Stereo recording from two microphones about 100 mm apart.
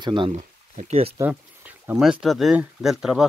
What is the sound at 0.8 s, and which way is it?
Speech, 75° right (ahead or behind).